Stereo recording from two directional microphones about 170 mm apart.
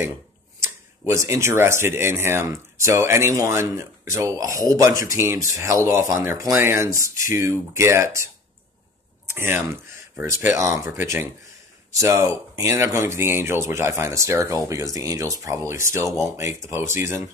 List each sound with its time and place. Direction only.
1.0 s speech: 15° right (ahead or behind)
9.3 s speech: 15° right (ahead or behind)